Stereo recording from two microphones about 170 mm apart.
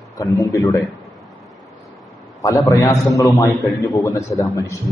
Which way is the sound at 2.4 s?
20° left (ahead or behind).